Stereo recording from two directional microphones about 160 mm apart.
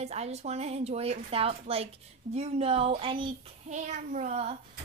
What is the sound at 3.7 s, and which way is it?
Speech, 50° right (ahead or behind).